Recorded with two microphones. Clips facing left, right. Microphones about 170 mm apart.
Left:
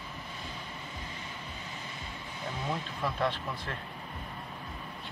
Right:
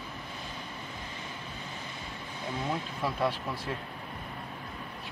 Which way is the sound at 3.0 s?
5° right (ahead or behind).